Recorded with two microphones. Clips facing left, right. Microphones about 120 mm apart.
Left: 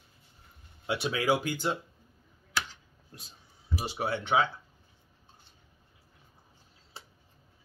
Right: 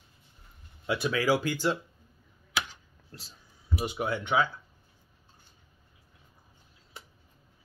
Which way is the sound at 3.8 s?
30° left (ahead or behind).